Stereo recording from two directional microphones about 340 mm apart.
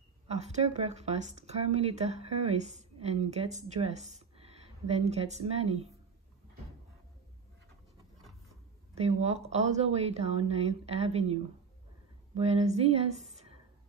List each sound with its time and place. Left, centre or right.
0.3 s a woman's voice: centre
8.9 s speech: centre